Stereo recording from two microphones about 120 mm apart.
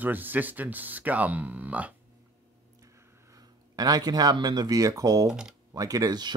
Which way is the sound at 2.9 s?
30° right (ahead or behind).